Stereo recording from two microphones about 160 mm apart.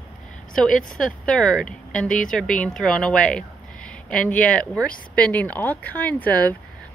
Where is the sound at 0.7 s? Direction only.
55° left (ahead or behind).